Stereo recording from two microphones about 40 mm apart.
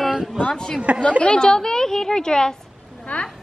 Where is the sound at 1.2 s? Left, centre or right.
Left.